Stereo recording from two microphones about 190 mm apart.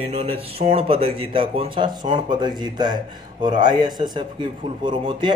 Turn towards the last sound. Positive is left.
turn(degrees=-25)  # may be behind; listen again after turning